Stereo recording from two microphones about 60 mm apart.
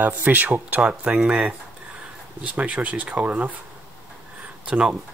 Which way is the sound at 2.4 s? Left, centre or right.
Right.